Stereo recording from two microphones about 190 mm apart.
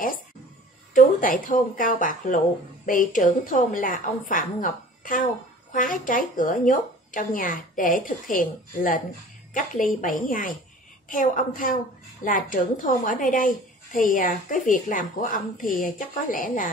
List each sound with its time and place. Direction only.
0.9 s a woman's voice: 45° left (ahead or behind)